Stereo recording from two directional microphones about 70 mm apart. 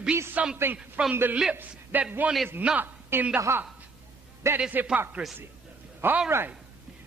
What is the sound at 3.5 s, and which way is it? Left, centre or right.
A woman's voice, right.